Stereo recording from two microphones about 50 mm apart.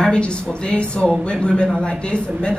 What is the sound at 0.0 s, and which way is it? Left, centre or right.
A woman's voice, centre.